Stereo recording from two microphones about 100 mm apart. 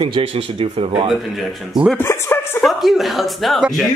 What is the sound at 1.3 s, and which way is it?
Speech, centre (ahead or behind).